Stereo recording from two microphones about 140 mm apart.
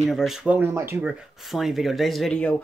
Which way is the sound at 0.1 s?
Centre (ahead or behind).